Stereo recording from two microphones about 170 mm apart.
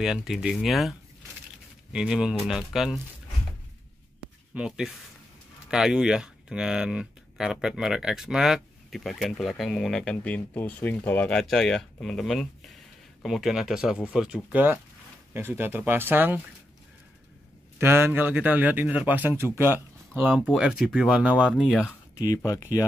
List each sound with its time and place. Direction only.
0.0 s speech: 5° right (ahead or behind)
4.6 s a man's voice: 5° right (ahead or behind)
17.7 s a man's voice: 15° right (ahead or behind)
22.2 s speech: 20° left (ahead or behind)